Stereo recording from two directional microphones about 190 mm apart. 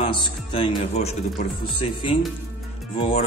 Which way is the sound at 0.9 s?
35° left (ahead or behind).